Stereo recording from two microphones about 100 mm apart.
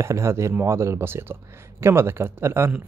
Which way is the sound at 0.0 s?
30° right (ahead or behind).